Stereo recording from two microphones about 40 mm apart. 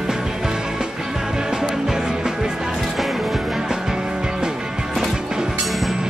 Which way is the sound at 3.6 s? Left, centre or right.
Centre.